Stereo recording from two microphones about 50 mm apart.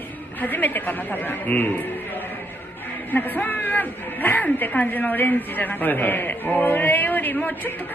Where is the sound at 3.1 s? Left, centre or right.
Left.